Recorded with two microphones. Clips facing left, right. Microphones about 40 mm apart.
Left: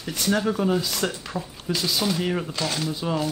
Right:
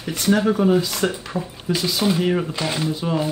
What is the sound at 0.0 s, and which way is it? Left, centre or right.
Speech, centre.